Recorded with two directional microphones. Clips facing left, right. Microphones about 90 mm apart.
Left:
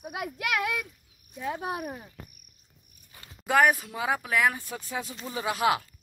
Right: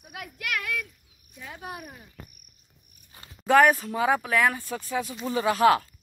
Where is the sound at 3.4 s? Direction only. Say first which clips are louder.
Right 4 dB; 10° left (ahead or behind).